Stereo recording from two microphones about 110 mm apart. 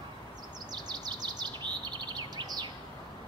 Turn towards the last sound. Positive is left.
turn(degrees=-40)  # may be behind; listen again after turning